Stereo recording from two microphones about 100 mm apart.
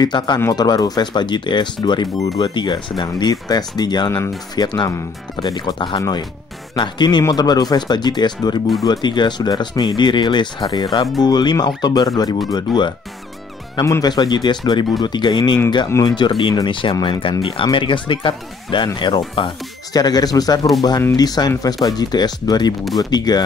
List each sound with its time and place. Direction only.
0.0 s speech: 45° left (ahead or behind)
5.9 s speech: 40° left (ahead or behind)
13.7 s speech: 30° left (ahead or behind)
14.0 s speech: 45° left (ahead or behind)
19.9 s speech: 40° left (ahead or behind)